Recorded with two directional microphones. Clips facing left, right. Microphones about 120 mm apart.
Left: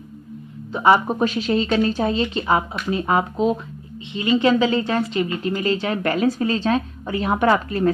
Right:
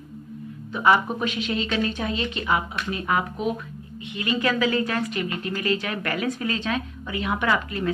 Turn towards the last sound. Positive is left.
turn(degrees=40)  # may be behind; listen again after turning